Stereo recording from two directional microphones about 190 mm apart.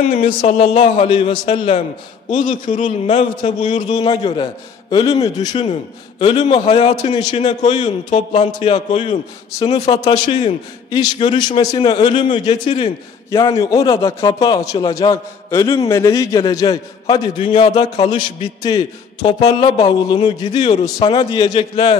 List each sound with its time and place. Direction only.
0.0 s a man's voice: 30° left (ahead or behind)
2.7 s a man's voice: 40° left (ahead or behind)
3.5 s a man's voice: 25° left (ahead or behind)
5.5 s a man's voice: 35° left (ahead or behind)
7.1 s a man's voice: 20° left (ahead or behind)
7.3 s a man's voice: 35° left (ahead or behind)
8.5 s a man's voice: 40° left (ahead or behind)
10.0 s a man's voice: 25° left (ahead or behind)
12.3 s a man's voice: 35° left (ahead or behind)
13.3 s a man's voice: 20° left (ahead or behind)
17.8 s a man's voice: 20° left (ahead or behind)